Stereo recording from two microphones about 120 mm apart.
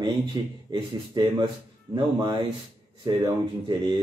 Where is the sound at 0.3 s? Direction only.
35° right (ahead or behind).